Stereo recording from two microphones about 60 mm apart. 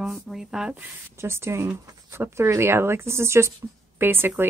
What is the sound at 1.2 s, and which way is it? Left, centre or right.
A woman's voice, right.